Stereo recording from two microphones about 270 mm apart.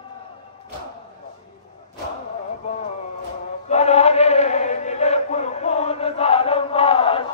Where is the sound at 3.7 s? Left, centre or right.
Left.